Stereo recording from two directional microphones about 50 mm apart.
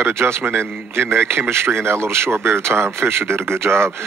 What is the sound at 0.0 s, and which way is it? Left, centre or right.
A man's voice, right.